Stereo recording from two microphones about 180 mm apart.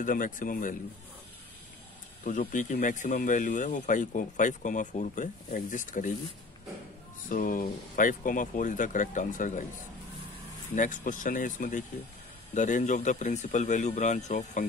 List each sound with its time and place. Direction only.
0.0 s speech: 50° left (ahead or behind)
2.2 s speech: 45° left (ahead or behind)
7.2 s speech: 50° left (ahead or behind)
10.7 s speech: 45° left (ahead or behind)